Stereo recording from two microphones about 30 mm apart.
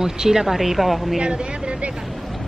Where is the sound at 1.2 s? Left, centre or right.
Right.